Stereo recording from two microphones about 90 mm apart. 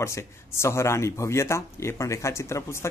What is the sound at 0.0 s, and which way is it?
Speech, 30° left (ahead or behind).